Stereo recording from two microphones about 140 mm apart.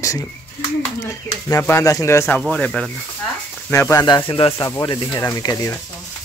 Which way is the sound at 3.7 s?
20° left (ahead or behind).